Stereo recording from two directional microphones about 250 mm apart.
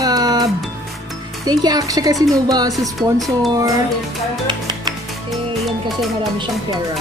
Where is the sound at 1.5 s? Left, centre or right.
Centre.